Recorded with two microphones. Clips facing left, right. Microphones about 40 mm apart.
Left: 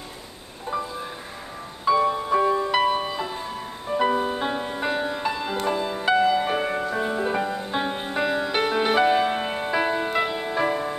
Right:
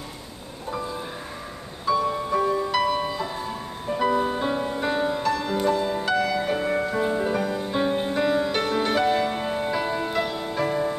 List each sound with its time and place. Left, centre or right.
1.9 s music: centre
6.7 s music: centre
7.0 s music: centre